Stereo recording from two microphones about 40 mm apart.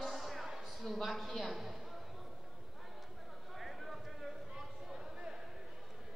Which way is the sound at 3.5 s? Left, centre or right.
Centre.